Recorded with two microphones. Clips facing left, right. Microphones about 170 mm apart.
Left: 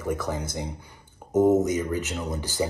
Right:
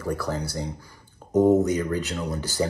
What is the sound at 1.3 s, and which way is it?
Speech, 15° right (ahead or behind).